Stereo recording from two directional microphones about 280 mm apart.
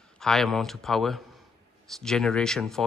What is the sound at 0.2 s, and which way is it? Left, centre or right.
A man's voice, centre.